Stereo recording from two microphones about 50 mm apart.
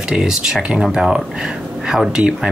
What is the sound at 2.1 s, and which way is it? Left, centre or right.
Speech, centre.